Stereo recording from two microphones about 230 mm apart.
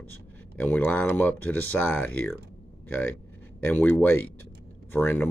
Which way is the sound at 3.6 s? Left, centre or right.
Centre.